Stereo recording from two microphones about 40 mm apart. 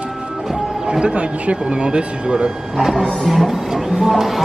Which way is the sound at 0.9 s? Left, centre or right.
Right.